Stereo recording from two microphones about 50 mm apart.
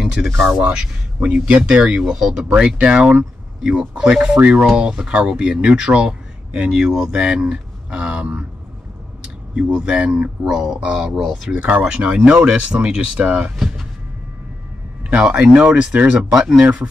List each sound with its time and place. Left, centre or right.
0.0 s a sound: centre
0.6 s speech: right
2.1 s speech: centre
2.5 s speech: right
9.6 s speech: centre
10.5 s speech: centre
10.8 s speech: centre
11.1 s speech: centre
11.5 s speech: right
13.6 s music: centre
15.1 s speech: right
16.3 s speech: centre